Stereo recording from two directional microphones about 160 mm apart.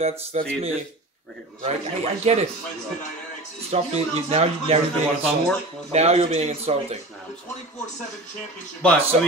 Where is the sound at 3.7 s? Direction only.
40° right (ahead or behind).